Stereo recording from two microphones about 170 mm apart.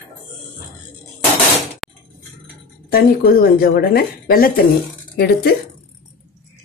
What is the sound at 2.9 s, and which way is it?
Speech, 60° left (ahead or behind).